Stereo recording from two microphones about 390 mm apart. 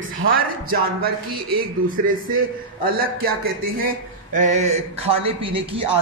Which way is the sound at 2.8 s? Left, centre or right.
Right.